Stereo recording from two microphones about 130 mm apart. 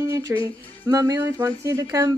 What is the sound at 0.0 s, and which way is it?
Music, 20° right (ahead or behind).